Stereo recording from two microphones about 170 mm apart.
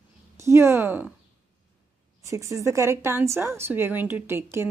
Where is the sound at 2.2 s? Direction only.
20° right (ahead or behind).